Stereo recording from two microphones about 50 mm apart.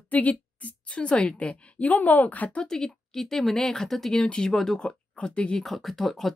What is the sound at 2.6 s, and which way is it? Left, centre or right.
Speech, centre.